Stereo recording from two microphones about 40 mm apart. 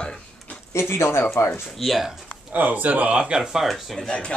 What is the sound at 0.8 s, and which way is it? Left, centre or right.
Speech, left.